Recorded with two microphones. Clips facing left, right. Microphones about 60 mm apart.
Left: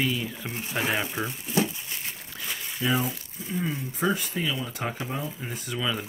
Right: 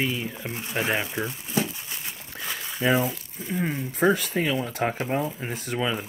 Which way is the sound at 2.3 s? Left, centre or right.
Right.